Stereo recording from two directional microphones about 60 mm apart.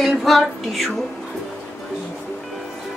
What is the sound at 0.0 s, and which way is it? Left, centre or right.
Music, centre.